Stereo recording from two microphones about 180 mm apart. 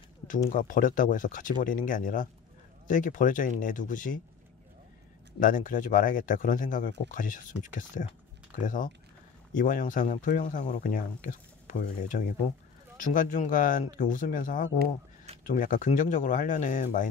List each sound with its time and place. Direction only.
0.5 s speech: 50° left (ahead or behind)
5.4 s speech: 50° left (ahead or behind)